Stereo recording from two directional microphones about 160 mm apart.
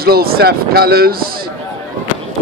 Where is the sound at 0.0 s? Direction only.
70° right (ahead or behind).